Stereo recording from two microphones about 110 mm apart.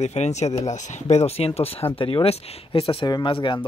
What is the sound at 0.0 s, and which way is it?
Speech, 90° left.